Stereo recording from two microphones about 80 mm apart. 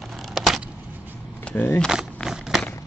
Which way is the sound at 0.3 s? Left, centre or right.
Centre.